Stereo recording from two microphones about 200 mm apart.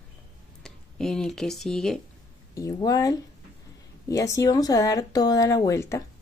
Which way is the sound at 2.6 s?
15° left (ahead or behind).